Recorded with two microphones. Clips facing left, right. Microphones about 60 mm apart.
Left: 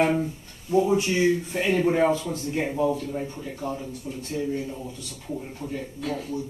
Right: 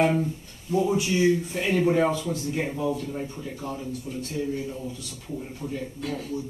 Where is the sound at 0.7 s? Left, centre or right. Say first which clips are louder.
Left 2 dB; centre.